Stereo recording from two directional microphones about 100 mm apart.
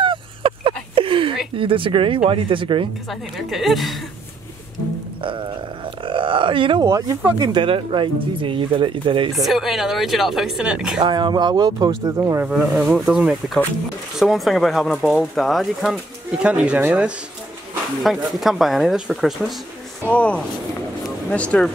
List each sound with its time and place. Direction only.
0.0 s a sound: 55° right (ahead or behind)
1.6 s speech: 60° right (ahead or behind)
3.1 s speech: centre (ahead or behind)
6.0 s speech: 60° right (ahead or behind)
6.8 s speech: 35° right (ahead or behind)
7.3 s speech: 50° right (ahead or behind)
9.3 s speech: centre (ahead or behind)
11.0 s speech: 50° right (ahead or behind)
12.4 s speech: 5° right (ahead or behind)
16.4 s speech: 10° right (ahead or behind)
18.0 s speech: centre (ahead or behind)
20.1 s speech: 10° left (ahead or behind)